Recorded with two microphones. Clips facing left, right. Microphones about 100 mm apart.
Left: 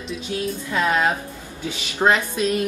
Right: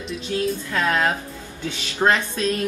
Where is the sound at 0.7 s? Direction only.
15° left (ahead or behind).